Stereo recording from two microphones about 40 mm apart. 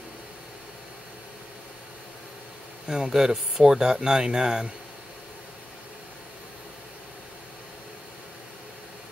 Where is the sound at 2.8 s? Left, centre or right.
Centre.